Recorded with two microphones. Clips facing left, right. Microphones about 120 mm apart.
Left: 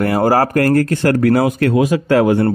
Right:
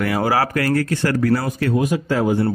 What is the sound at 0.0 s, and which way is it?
Speech, 45° left (ahead or behind).